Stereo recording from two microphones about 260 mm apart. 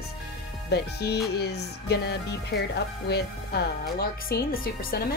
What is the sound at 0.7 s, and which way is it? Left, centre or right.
A woman's voice, left.